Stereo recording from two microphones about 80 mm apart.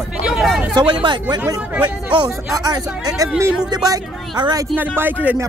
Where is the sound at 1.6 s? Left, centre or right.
Centre.